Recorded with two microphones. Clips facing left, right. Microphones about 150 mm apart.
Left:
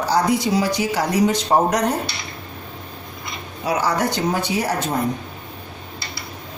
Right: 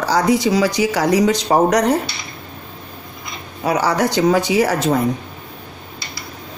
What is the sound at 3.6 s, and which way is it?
Speech, 80° right.